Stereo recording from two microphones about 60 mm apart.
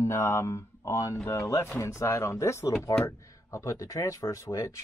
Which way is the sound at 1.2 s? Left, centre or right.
Left.